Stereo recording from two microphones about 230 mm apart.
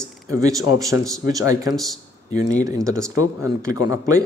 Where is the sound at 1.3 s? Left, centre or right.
Centre.